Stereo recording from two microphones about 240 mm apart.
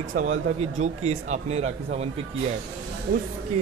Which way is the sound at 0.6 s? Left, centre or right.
Right.